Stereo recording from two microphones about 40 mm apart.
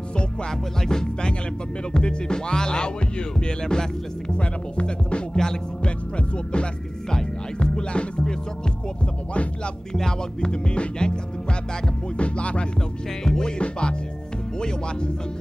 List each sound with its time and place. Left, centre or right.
0.5 s music: centre
4.4 s speech: left
5.9 s music: left
9.9 s music: centre
10.5 s music: left
12.2 s music: left
13.2 s music: centre